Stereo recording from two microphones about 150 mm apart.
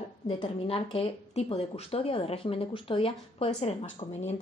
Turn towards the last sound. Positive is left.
turn(degrees=45)  # may be behind; listen again after turning